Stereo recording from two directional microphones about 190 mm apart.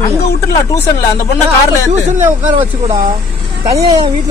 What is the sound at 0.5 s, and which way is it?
Speech, 15° left (ahead or behind).